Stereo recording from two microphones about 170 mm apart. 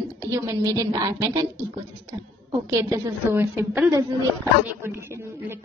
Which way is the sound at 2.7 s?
15° right (ahead or behind).